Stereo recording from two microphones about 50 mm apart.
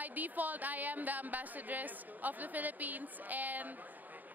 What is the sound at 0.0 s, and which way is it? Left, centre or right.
Speech, right.